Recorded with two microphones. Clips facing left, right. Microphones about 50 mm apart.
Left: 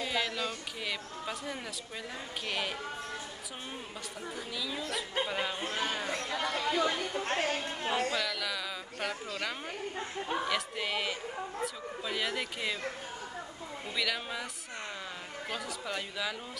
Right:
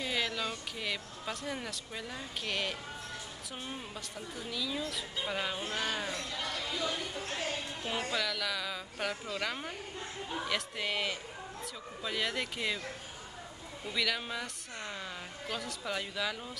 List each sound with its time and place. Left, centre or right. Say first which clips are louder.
0.0 s speech: left 1 dB; centre
4.6 s speech: even; centre
6.0 s speech: left 4 dB; left
8.1 s speech: even; centre
9.9 s speech: left 6 dB; left
10.5 s speech: left 2 dB; centre
13.9 s speech: even; centre
15.5 s speech: even; centre